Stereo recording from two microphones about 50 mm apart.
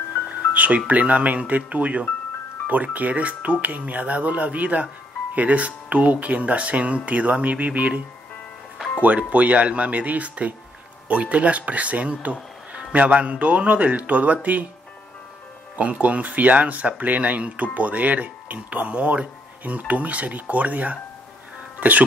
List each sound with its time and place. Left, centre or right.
0.3 s speech: right
9.0 s speech: right
15.7 s speech: right